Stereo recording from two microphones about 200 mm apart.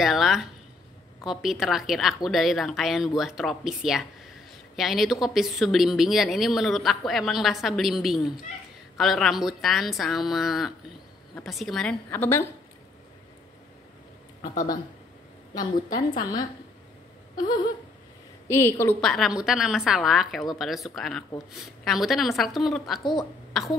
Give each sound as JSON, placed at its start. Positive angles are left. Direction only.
{"t": 0.0, "sound": "speech", "side_deg": 0}
{"t": 14.4, "sound": "speech", "side_deg": 45}
{"t": 18.5, "sound": "a woman's voice", "side_deg": 10}